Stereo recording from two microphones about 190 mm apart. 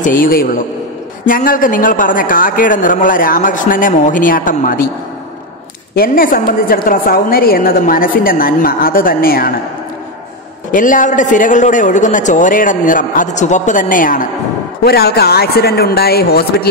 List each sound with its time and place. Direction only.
0.0 s a woman's voice: 45° left (ahead or behind)
5.9 s a woman's voice: 50° left (ahead or behind)
10.7 s a woman's voice: 45° left (ahead or behind)
14.9 s speech: 55° left (ahead or behind)